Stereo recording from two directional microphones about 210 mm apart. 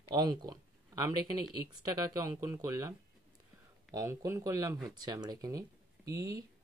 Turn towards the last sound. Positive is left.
turn(degrees=-15)  # may be behind; listen again after turning